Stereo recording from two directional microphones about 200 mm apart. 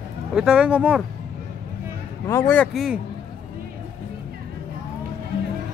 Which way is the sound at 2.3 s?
10° left (ahead or behind).